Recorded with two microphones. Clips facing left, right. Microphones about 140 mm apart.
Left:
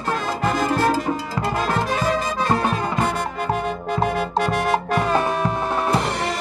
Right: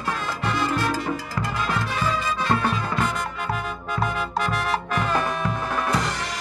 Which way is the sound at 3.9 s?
40° left (ahead or behind).